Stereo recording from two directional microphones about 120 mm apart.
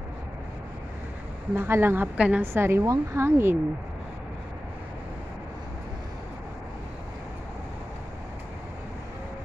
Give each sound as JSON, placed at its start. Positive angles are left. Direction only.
{"t": 1.5, "sound": "a woman's voice", "side_deg": -20}
{"t": 2.4, "sound": "a woman's voice", "side_deg": -20}